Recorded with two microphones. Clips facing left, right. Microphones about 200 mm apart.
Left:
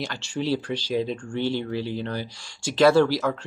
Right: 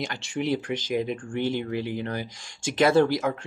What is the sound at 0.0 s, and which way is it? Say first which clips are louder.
Speech: even; 20° right (ahead or behind).